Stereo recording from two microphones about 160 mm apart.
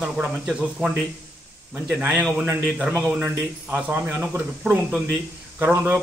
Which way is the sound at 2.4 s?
15° right (ahead or behind).